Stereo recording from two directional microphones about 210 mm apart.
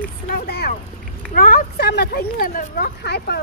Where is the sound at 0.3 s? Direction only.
50° left (ahead or behind).